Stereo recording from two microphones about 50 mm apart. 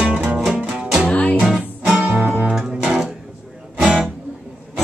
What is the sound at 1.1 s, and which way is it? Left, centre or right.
Music, centre.